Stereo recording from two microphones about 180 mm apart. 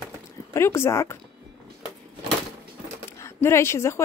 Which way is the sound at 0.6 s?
15° left (ahead or behind).